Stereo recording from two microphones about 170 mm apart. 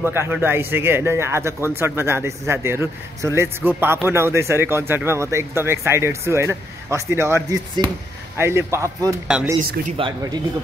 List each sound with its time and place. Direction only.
0.0 s a man's voice: 15° right (ahead or behind)
9.3 s speech: 5° right (ahead or behind)
9.9 s speech: 30° right (ahead or behind)